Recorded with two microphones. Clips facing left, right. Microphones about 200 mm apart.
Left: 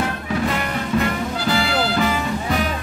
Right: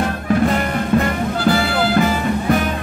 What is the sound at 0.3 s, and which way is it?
Music, 50° right (ahead or behind).